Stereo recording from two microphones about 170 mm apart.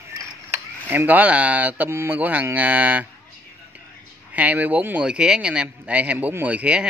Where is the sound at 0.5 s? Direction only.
10° right (ahead or behind).